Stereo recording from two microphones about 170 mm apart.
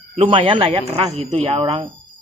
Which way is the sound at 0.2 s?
30° right (ahead or behind).